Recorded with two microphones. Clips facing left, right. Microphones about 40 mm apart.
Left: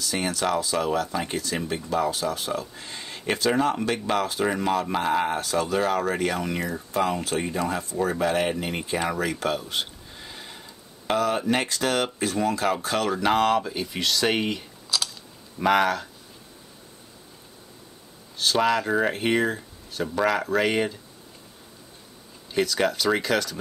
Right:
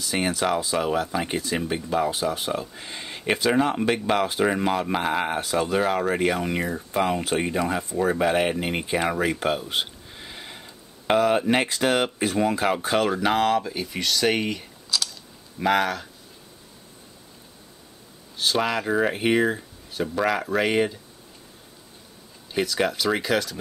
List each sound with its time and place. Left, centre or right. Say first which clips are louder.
0.0 s speech: right 2 dB; right
13.2 s speech: even; centre
15.6 s speech: left 1 dB; centre
18.4 s speech: left 2 dB; centre
22.5 s speech: left 1 dB; centre